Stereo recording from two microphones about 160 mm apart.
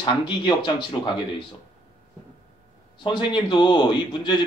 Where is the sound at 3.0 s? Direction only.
30° left (ahead or behind).